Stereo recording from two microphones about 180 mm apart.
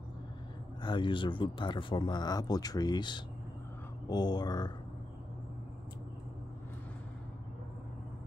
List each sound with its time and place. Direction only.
0.8 s speech: 25° left (ahead or behind)